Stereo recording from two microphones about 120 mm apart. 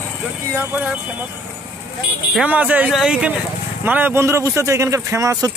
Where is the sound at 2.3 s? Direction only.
10° right (ahead or behind).